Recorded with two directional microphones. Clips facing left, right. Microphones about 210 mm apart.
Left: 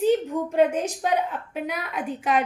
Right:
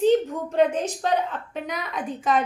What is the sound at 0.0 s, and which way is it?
A woman's voice, 10° left (ahead or behind).